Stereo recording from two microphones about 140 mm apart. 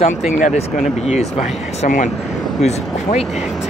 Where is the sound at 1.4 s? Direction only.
60° left (ahead or behind).